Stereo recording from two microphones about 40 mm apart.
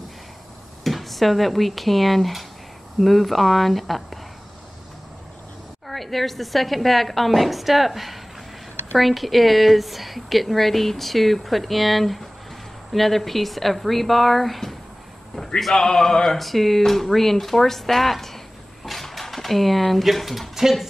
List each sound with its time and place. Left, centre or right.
0.8 s a woman's voice: centre
5.9 s a woman's voice: centre
15.7 s a sound: centre
16.3 s a woman's voice: centre